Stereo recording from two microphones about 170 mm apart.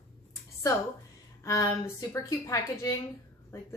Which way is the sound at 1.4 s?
15° left (ahead or behind).